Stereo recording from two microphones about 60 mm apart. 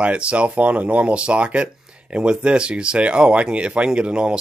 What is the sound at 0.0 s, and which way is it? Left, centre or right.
Speech, centre.